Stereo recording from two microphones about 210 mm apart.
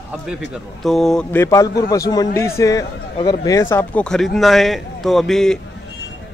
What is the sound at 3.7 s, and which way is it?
Speech, 5° left (ahead or behind).